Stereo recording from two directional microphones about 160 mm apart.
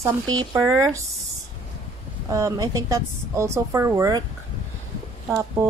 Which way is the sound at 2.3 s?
20° right (ahead or behind).